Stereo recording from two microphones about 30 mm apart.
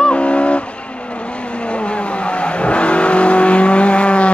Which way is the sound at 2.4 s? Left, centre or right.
Left.